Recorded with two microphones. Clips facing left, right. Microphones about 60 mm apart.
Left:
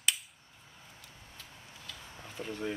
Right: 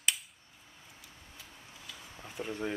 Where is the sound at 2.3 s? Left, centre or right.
Centre.